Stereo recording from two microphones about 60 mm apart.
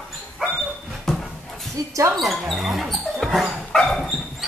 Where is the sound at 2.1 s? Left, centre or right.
Centre.